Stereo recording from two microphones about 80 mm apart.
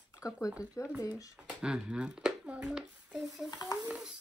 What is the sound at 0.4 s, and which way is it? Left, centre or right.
Speech, left.